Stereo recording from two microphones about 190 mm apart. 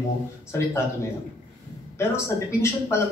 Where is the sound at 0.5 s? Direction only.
15° left (ahead or behind).